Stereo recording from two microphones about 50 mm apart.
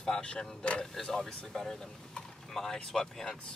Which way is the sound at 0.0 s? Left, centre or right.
Centre.